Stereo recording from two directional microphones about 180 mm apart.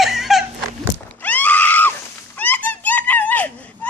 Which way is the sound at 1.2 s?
10° left (ahead or behind).